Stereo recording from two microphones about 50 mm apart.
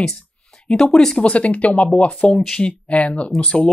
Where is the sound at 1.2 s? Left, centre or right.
Left.